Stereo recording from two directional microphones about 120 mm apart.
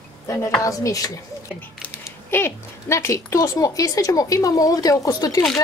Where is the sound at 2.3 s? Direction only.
20° left (ahead or behind).